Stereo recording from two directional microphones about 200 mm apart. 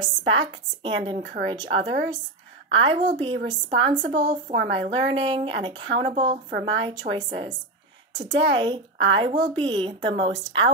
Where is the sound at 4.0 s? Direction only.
60° right (ahead or behind).